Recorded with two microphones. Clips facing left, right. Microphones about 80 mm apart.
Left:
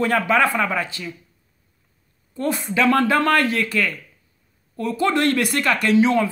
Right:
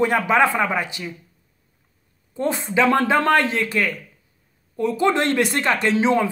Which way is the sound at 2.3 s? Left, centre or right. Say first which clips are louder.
Right 1 dB; right.